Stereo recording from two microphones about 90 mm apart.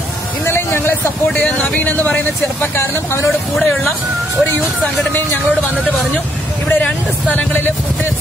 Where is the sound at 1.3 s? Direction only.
10° left (ahead or behind); by 3.2 s 30° left (ahead or behind).